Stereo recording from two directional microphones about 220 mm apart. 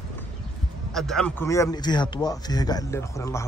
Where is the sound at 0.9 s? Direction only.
Centre (ahead or behind).